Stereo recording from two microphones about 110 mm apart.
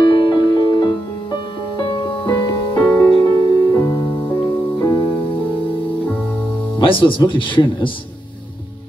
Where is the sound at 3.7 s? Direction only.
40° left (ahead or behind).